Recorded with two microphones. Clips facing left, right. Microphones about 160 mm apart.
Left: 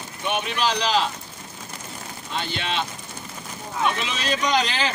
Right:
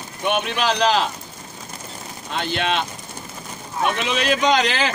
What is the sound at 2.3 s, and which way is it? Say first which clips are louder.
Speech: right 5 dB; 60° right (ahead or behind).